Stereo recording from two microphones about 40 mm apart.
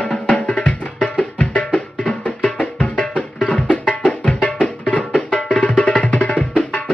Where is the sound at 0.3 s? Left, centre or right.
Left.